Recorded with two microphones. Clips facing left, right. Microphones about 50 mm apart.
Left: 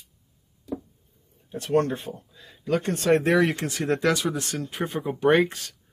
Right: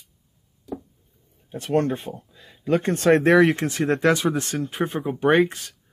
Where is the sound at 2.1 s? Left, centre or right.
Right.